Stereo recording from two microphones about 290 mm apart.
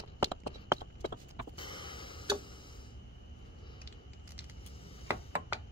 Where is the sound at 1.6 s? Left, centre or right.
Centre.